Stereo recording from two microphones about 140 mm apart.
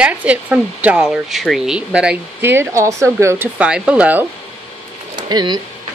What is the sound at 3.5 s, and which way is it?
Speech, 10° right (ahead or behind).